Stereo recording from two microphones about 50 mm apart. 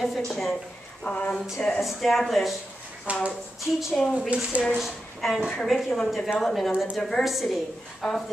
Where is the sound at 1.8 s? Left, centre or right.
Centre.